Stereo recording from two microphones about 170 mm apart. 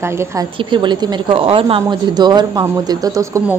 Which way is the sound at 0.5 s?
30° right (ahead or behind).